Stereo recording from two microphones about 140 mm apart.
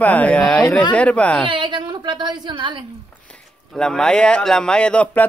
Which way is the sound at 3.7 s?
5° left (ahead or behind).